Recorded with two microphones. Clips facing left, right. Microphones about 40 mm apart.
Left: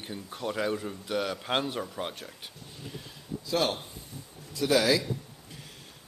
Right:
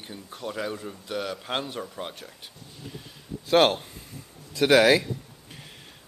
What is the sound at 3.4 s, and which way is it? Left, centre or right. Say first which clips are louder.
Speech: right 9 dB; right.